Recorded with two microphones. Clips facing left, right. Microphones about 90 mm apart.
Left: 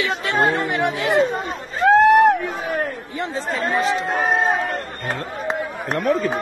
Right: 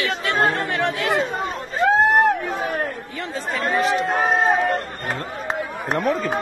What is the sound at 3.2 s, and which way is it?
Speech, 25° left (ahead or behind).